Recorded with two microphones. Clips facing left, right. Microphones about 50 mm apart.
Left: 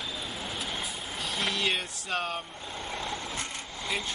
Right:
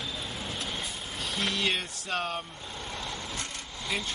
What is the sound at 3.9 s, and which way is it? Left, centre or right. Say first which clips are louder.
Speech: even; centre.